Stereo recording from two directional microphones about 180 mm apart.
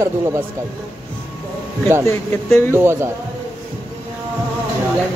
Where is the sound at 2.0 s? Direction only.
15° left (ahead or behind).